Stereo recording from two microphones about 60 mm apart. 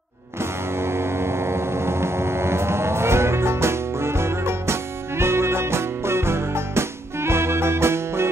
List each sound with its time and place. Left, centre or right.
0.4 s music: right